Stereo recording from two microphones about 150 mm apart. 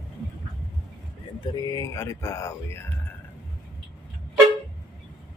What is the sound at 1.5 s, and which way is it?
Speech, 20° left (ahead or behind).